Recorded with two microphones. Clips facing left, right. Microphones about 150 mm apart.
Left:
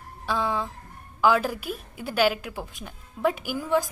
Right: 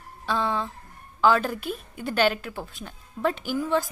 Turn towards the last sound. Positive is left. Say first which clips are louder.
# even
turn(degrees=10)  # may be behind; listen again after turning